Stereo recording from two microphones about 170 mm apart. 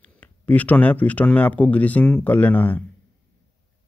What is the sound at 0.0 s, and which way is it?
Speech, 10° left (ahead or behind).